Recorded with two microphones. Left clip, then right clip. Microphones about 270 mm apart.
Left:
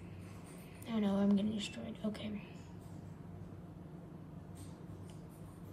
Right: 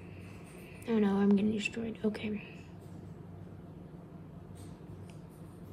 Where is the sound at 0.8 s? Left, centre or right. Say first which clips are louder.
Right 6 dB; right.